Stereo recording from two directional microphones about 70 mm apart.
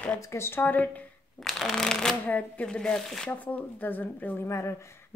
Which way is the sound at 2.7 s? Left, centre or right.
Centre.